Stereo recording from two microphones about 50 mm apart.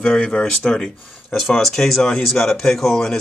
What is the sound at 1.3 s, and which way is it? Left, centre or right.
Speech, centre.